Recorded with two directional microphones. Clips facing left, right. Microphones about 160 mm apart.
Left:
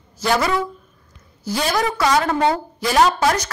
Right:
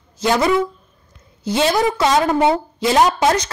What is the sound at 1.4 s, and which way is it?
A woman's voice, 20° right (ahead or behind).